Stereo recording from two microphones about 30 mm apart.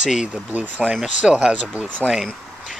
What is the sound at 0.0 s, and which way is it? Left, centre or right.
Speech, centre.